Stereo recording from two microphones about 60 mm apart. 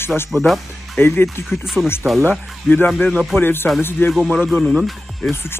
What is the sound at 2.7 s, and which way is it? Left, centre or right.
A man's voice, left.